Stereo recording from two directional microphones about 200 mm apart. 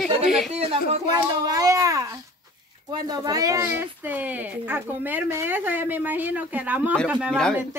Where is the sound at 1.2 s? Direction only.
15° right (ahead or behind); by 7.6 s 5° left (ahead or behind).